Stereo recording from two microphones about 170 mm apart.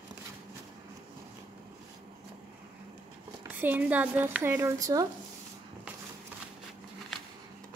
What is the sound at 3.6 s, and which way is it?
Speech, 10° right (ahead or behind).